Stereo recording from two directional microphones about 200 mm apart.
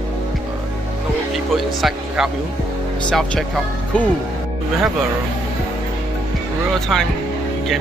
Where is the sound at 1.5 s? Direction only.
Centre (ahead or behind).